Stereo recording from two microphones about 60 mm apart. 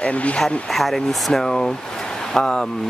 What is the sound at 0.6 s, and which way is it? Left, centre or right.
Speech, centre.